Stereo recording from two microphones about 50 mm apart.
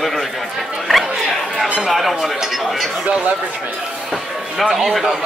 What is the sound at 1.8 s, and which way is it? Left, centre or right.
A man's voice, centre.